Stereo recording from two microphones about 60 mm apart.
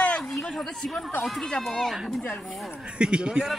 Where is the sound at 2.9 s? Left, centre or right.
Centre.